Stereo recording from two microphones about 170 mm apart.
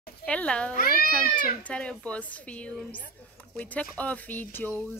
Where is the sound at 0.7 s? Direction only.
60° left (ahead or behind).